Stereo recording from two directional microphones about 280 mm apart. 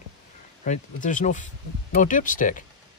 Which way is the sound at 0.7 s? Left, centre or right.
Left.